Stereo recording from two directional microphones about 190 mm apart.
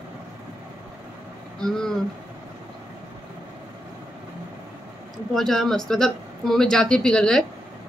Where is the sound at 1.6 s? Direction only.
5° left (ahead or behind).